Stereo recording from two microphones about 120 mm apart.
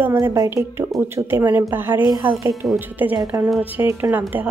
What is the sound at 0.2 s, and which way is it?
A woman's voice, 30° right (ahead or behind).